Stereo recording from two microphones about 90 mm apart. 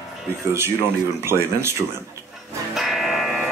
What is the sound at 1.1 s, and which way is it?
Speech, 30° right (ahead or behind).